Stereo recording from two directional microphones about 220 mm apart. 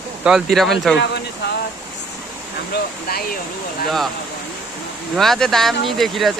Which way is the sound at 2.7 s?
45° left (ahead or behind).